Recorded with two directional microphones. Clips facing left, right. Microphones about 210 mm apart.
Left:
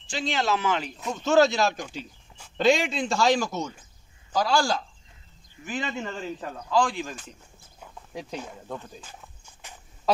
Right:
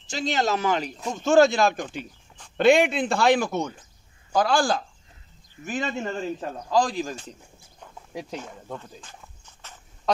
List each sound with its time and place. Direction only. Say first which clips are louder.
0.0 s speech: right 3 dB; 45° right (ahead or behind)
8.1 s speech: right 2 dB; 5° right (ahead or behind)
8.7 s walk: even; 5° left (ahead or behind)